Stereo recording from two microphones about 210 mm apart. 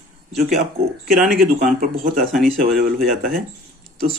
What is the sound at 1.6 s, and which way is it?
Speech, 40° right (ahead or behind).